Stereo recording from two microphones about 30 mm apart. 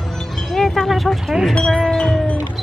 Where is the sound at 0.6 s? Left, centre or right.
Centre.